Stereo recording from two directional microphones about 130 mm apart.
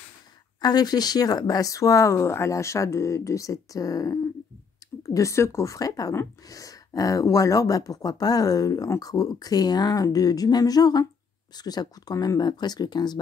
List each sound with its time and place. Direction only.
0.6 s speech: 30° left (ahead or behind)